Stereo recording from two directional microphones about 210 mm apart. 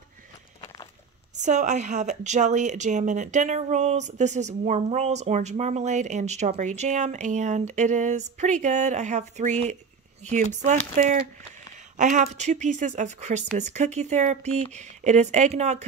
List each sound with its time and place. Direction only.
1.3 s a woman's voice: 35° right (ahead or behind)
12.0 s a woman's voice: 35° right (ahead or behind)